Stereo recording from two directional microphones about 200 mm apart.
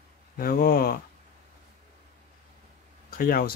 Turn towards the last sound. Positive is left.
turn(degrees=45)  # may be behind; listen again after turning